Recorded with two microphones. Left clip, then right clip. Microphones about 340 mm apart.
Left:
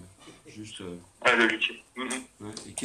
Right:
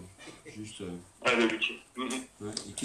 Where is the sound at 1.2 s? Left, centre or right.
Left.